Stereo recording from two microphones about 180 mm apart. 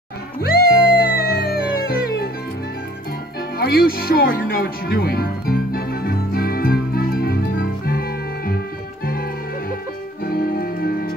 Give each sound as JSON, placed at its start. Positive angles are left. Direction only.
{"t": 0.4, "sound": "music", "side_deg": 60}
{"t": 3.5, "sound": "music", "side_deg": 60}